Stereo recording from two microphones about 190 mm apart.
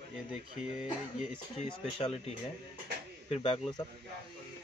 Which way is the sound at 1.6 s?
30° left (ahead or behind).